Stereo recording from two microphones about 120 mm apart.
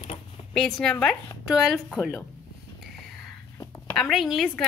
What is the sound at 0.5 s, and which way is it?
A woman's voice, 5° left (ahead or behind).